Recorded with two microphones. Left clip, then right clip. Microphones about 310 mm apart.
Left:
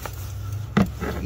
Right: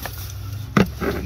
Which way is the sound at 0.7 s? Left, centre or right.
Centre.